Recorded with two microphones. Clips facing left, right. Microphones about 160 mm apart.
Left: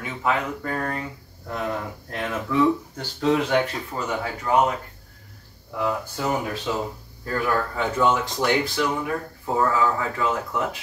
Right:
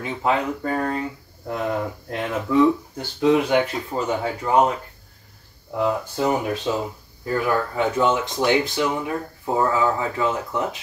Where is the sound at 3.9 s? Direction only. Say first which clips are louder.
Right 4 dB; 25° right (ahead or behind).